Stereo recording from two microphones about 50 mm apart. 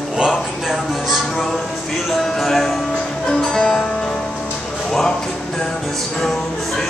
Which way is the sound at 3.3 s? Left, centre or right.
Centre.